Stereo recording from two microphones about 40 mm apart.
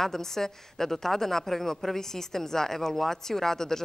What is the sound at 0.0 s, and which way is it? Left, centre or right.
A woman's voice, centre.